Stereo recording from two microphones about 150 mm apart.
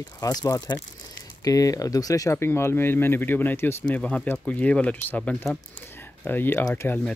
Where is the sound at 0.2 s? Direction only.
25° left (ahead or behind).